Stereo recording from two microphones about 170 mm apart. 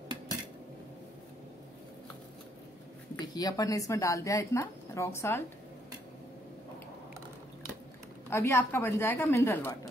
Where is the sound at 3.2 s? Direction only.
25° left (ahead or behind).